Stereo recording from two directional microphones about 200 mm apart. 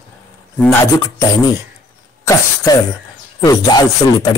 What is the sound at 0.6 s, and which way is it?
Speech, 15° left (ahead or behind).